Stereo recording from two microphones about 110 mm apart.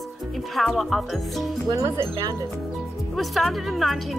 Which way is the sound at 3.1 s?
Centre (ahead or behind).